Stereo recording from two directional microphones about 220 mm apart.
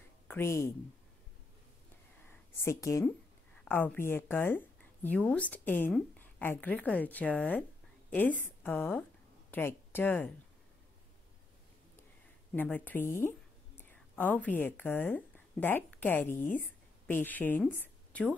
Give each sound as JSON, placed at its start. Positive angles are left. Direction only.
{"t": 0.3, "sound": "speech", "side_deg": 10}
{"t": 2.2, "sound": "a sound", "side_deg": 10}
{"t": 3.6, "sound": "a woman's voice", "side_deg": 10}
{"t": 12.5, "sound": "a woman's voice", "side_deg": 10}
{"t": 16.3, "sound": "speech", "side_deg": 35}
{"t": 17.1, "sound": "a woman's voice", "side_deg": 10}